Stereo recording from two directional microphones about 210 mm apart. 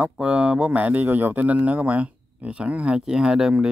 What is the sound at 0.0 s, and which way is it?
Speech, 5° right (ahead or behind).